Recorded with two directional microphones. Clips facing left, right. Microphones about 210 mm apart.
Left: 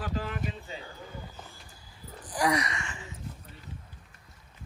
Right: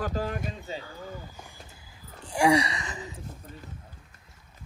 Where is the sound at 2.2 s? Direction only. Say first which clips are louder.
Right 5 dB; 25° right (ahead or behind).